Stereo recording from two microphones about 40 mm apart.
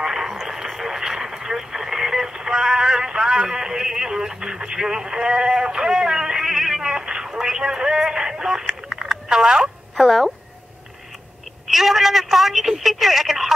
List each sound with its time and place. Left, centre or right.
0.0 s radio: centre
7.5 s a sound: centre
9.9 s speech: centre
11.6 s telephone: centre